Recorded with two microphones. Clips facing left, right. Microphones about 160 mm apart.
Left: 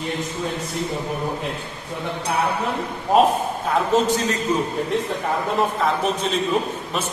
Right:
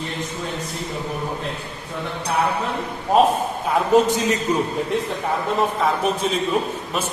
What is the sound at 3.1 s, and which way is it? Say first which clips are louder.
Speech: even; centre (ahead or behind).